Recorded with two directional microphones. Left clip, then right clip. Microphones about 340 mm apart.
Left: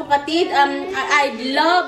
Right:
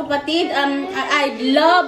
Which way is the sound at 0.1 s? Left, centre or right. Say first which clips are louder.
Left 3 dB; centre.